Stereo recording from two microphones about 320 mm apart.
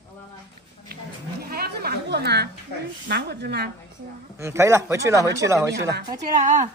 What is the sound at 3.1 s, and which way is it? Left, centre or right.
Speech, right.